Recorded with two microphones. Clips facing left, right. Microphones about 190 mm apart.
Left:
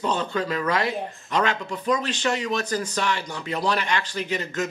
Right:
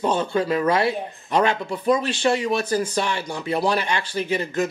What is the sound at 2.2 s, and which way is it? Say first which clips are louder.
Speech: right 5 dB; 30° right (ahead or behind).